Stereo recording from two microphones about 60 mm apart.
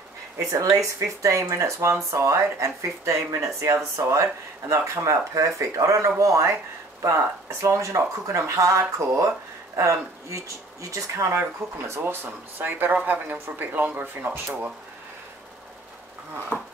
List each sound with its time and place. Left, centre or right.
0.4 s speech: right
12.0 s speech: right
16.5 s wood: left